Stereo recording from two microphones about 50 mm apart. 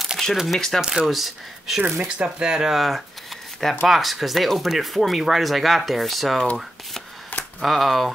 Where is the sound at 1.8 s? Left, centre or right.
Centre.